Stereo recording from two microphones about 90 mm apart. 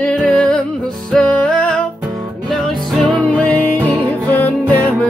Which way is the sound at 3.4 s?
15° left (ahead or behind).